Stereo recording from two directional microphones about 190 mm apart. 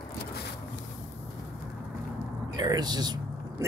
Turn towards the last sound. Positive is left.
turn(degrees=-20)  # may be behind; listen again after turning